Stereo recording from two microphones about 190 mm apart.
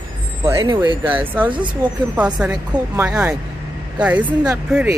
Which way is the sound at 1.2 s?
10° right (ahead or behind).